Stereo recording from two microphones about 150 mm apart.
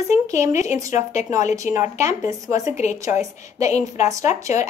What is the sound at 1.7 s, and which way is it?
Speech, 20° right (ahead or behind).